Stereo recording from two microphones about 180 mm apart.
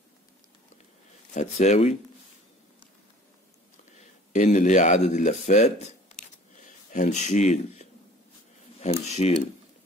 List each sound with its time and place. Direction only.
1.3 s speech: 40° left (ahead or behind)
4.0 s speech: 40° left (ahead or behind)
6.1 s a sound: 45° left (ahead or behind)
8.7 s speech: 40° left (ahead or behind)